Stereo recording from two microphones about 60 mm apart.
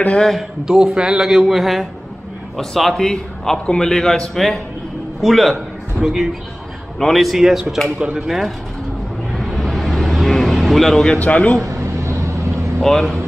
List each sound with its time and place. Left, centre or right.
0.4 s a man's voice: centre
9.3 s vehicle: centre
11.1 s a man's voice: left
11.6 s vehicle: right
12.8 s a man's voice: centre